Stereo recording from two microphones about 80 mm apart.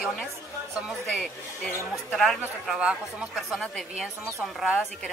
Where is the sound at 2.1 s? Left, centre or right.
Centre.